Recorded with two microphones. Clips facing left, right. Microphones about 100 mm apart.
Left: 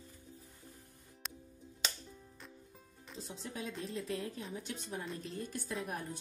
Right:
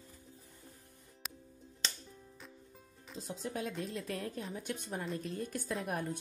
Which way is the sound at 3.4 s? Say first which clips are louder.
Right 4 dB; 45° right (ahead or behind).